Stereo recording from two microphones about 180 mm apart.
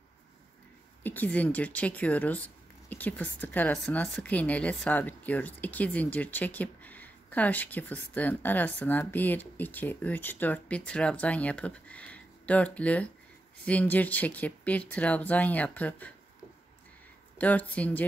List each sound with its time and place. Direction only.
1.0 s speech: 10° left (ahead or behind)
17.4 s speech: 10° left (ahead or behind)